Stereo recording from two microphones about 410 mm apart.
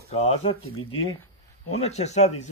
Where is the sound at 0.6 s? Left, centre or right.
Left.